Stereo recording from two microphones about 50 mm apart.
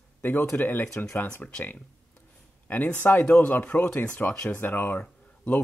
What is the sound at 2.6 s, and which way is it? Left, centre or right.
Speech, left.